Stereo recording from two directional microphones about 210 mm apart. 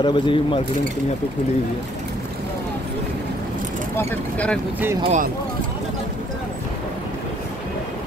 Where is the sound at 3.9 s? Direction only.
10° left (ahead or behind).